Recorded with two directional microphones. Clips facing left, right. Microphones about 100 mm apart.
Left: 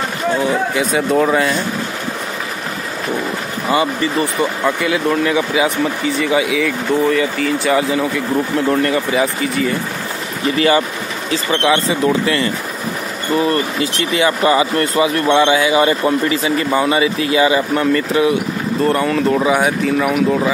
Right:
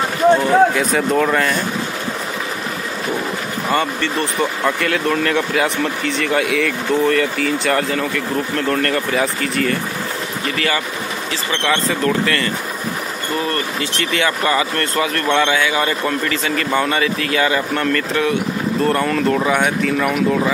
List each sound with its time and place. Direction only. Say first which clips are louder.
0.7 s speech: left 1 dB; 5° left (ahead or behind)
3.7 s speech: left 3 dB; 5° left (ahead or behind)
11.6 s speech: left 2 dB; 15° left (ahead or behind)
13.4 s speech: left 6 dB; 20° left (ahead or behind); by 20.5 s 5° left (ahead or behind)